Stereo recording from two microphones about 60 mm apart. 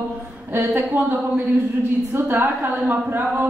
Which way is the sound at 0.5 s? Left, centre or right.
Right.